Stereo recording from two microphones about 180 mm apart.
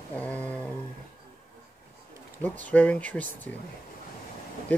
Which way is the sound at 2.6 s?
10° left (ahead or behind).